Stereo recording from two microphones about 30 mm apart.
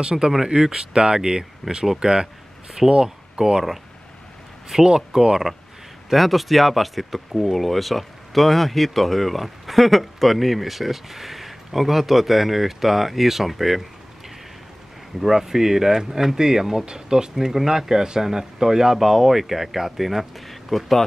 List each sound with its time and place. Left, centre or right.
0.0 s speech: right
4.7 s speech: centre
6.0 s speech: centre
15.1 s speech: centre
20.4 s a sound: centre